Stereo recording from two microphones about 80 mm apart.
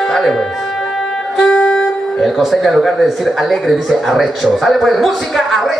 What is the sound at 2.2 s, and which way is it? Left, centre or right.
Speech, centre.